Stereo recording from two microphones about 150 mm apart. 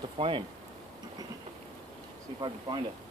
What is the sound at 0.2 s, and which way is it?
Speech, 35° right (ahead or behind).